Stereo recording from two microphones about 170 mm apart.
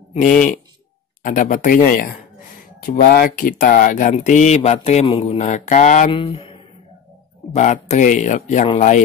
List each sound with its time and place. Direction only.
1.2 s speech: 50° left (ahead or behind)
6.1 s speech: 35° left (ahead or behind)